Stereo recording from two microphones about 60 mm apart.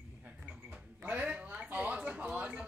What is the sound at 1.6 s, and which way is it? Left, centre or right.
Speech, right.